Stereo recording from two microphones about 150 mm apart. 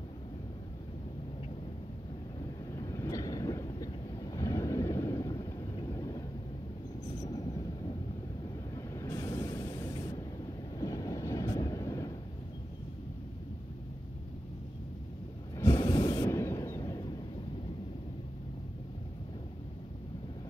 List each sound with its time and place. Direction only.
2.7 s vehicle: 20° left (ahead or behind)
8.7 s vehicle: 20° left (ahead or behind)
9.9 s spray: 25° left (ahead or behind)
10.8 s train: 20° left (ahead or behind)
15.6 s breathing: 20° left (ahead or behind)